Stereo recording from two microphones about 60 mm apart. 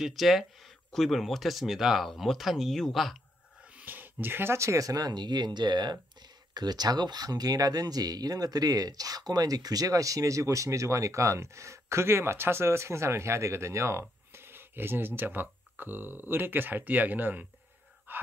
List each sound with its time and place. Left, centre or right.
0.0 s speech: centre
3.7 s speech: right
6.5 s speech: right
18.1 s a sound: right